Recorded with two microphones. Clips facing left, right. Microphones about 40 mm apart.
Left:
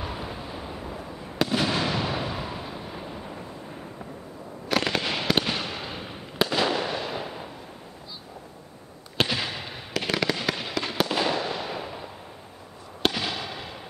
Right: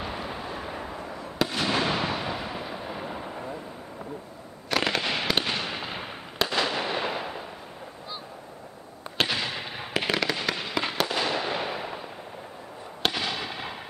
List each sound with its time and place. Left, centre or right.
1.4 s fireworks: centre
1.7 s fireworks: centre
2.9 s thunder: centre
4.6 s fireworks: centre
6.8 s fireworks: right
9.2 s fireworks: centre
9.8 s fireworks: centre
10.1 s fireworks: centre
10.7 s fireworks: centre
11.0 s fireworks: centre
11.3 s fireworks: right
13.0 s fireworks: centre